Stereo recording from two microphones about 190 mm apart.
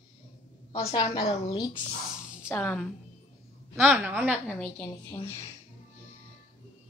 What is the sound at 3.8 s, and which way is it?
Speech, 10° right (ahead or behind).